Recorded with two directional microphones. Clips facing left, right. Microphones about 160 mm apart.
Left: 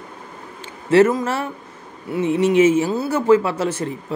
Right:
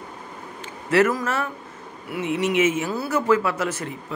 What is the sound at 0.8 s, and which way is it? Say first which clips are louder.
Speech: left 5 dB; 30° left (ahead or behind).